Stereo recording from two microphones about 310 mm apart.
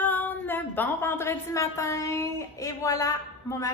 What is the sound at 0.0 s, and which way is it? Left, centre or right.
A woman's voice, centre.